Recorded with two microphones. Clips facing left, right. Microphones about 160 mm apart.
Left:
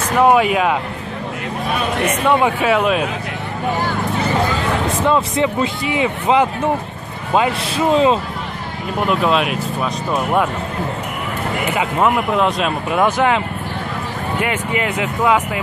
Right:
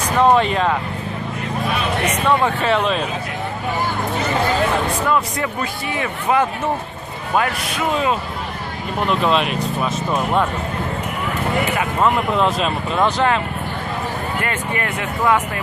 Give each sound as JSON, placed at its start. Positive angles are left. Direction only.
{"t": 0.2, "sound": "speech", "side_deg": 10}
{"t": 2.2, "sound": "speech", "side_deg": 15}
{"t": 4.9, "sound": "speech", "side_deg": 25}
{"t": 7.7, "sound": "speech", "side_deg": 30}
{"t": 9.0, "sound": "speech", "side_deg": 5}
{"t": 12.4, "sound": "speech", "side_deg": 0}
{"t": 12.9, "sound": "speech", "side_deg": 15}
{"t": 14.4, "sound": "speech", "side_deg": 15}